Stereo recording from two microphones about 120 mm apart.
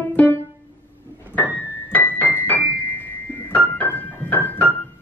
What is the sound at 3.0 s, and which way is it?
Piano, 15° left (ahead or behind).